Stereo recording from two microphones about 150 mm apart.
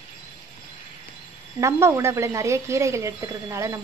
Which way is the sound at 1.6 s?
20° right (ahead or behind).